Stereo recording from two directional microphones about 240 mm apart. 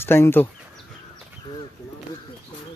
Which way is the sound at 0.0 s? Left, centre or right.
Centre.